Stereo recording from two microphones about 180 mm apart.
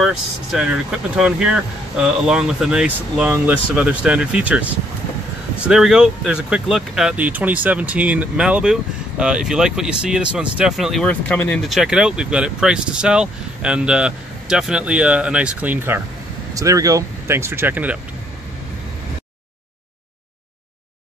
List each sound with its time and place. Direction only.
0.0 s speech: centre (ahead or behind)